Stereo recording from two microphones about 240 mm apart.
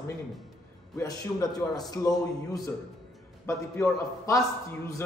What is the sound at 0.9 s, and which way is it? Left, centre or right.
A man's voice, centre.